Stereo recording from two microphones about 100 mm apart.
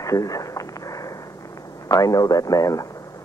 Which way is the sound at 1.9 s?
35° left (ahead or behind).